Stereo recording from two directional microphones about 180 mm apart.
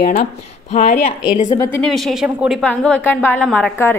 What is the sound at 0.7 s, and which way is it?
Speech, 40° left (ahead or behind).